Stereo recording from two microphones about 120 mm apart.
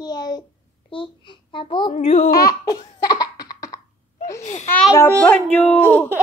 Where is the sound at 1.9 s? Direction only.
80° left.